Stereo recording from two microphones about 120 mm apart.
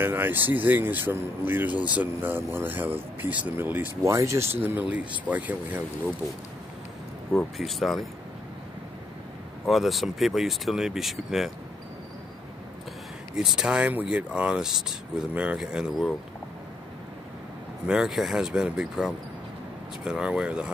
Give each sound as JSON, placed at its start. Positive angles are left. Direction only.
{"t": 0.0, "sound": "speech", "side_deg": -20}
{"t": 7.5, "sound": "speech", "side_deg": 0}
{"t": 9.7, "sound": "speech", "side_deg": 0}
{"t": 13.4, "sound": "speech", "side_deg": -5}
{"t": 17.8, "sound": "speech", "side_deg": -5}